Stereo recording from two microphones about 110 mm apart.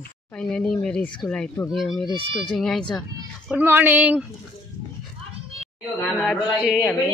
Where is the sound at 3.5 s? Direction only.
15° right (ahead or behind).